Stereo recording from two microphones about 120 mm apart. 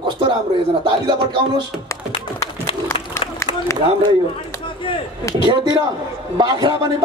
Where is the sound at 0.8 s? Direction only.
40° right (ahead or behind).